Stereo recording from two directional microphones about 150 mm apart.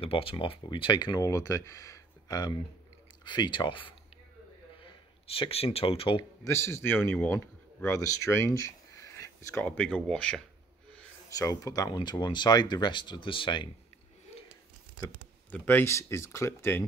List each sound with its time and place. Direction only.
0.0 s speech: 35° left (ahead or behind)
6.4 s a man's voice: 20° left (ahead or behind)
9.7 s speech: 5° left (ahead or behind)
11.2 s speech: 20° left (ahead or behind)
15.5 s speech: 10° left (ahead or behind)